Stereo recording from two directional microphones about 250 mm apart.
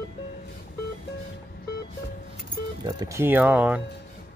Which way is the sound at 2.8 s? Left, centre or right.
Centre.